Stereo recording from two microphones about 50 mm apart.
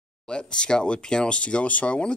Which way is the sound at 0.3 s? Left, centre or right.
Centre.